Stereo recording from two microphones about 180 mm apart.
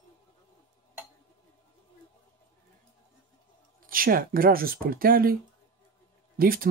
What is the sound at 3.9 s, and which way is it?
Speech, 50° right (ahead or behind).